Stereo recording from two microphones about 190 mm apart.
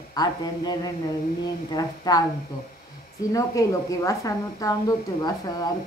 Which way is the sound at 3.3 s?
15° left (ahead or behind).